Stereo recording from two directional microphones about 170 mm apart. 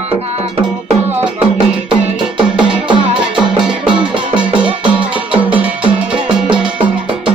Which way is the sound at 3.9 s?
30° right (ahead or behind).